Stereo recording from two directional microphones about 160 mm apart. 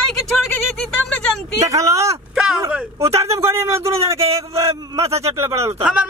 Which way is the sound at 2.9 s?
15° right (ahead or behind).